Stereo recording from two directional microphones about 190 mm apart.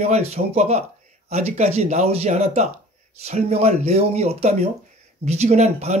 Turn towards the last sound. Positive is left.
turn(degrees=-35)  # may be behind; listen again after turning